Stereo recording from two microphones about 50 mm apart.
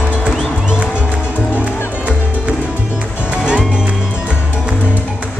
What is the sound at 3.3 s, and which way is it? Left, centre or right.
Music, centre.